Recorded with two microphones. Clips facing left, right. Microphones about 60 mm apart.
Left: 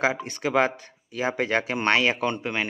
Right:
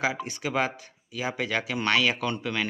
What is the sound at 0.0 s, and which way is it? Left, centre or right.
Speech, left.